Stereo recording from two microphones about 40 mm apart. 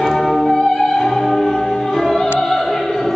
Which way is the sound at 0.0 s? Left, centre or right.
Centre.